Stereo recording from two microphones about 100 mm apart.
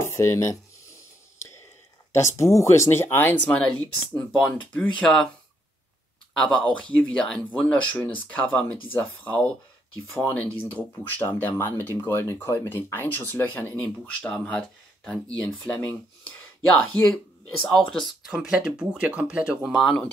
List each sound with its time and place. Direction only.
0.0 s speech: 30° left (ahead or behind)
2.1 s speech: 30° left (ahead or behind); by 5.3 s 5° left (ahead or behind)
6.3 s speech: 5° left (ahead or behind)